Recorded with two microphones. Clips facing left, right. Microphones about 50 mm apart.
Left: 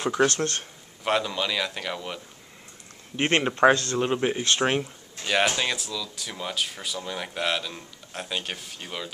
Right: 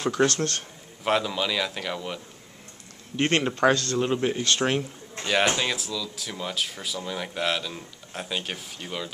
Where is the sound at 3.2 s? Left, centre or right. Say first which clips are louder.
Left 1 dB; centre.